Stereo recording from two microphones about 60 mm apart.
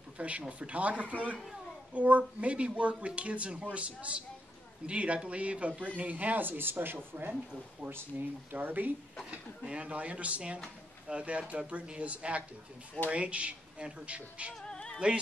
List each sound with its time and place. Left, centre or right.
0.2 s speech: right
8.5 s speech: right
9.2 s speech: centre
14.5 s music: centre